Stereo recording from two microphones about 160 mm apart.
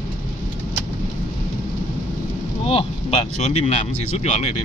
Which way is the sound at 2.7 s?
40° left (ahead or behind).